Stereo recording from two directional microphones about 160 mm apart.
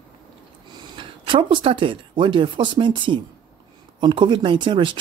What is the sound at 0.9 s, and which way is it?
Speech, 30° right (ahead or behind).